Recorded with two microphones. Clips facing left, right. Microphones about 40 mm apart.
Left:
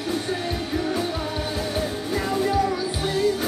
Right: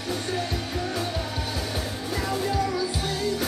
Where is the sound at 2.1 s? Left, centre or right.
Centre.